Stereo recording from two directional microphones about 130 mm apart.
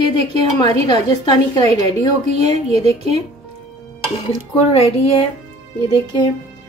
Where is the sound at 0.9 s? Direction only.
30° left (ahead or behind).